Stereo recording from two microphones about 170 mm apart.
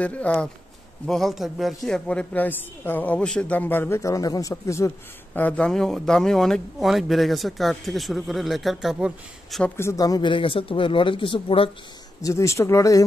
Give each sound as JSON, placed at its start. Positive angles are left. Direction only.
{"t": 0.0, "sound": "speech", "side_deg": 10}
{"t": 9.8, "sound": "speech", "side_deg": 20}
{"t": 12.2, "sound": "speech", "side_deg": 20}